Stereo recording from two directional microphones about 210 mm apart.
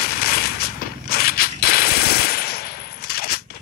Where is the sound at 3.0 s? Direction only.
45° left (ahead or behind).